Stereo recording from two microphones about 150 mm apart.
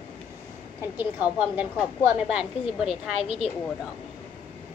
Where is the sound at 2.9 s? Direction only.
35° left (ahead or behind).